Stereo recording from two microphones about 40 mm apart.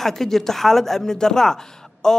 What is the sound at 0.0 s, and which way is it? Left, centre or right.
A man's voice, centre.